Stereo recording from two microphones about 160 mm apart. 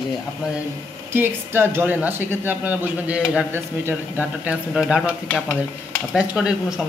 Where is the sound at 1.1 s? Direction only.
15° right (ahead or behind).